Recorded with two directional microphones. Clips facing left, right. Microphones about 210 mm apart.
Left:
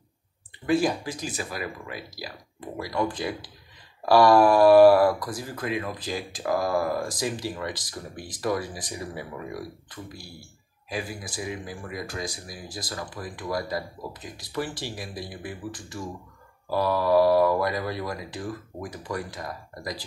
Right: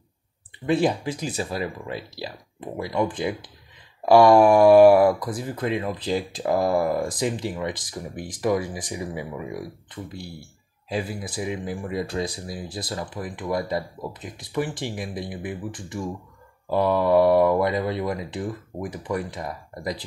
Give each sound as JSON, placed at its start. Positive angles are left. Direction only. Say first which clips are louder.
{"t": 0.7, "sound": "speech", "louder": "right 2 dB", "side_deg": -25}